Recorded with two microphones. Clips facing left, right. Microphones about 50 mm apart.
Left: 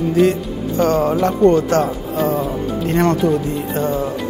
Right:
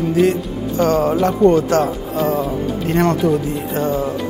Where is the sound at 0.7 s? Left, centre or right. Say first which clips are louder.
Even; left.